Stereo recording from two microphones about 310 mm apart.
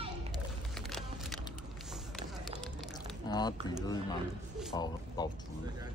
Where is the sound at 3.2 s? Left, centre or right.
Centre.